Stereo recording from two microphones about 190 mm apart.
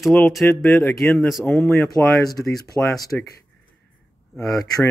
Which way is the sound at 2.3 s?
20° left (ahead or behind).